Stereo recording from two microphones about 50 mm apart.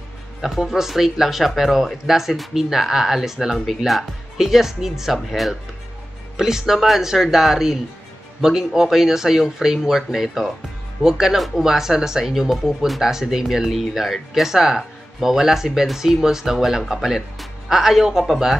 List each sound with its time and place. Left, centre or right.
0.4 s speech: centre